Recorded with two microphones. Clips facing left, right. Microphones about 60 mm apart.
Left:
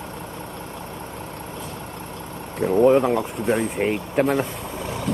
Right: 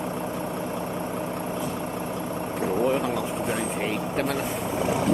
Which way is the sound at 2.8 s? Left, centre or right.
Left.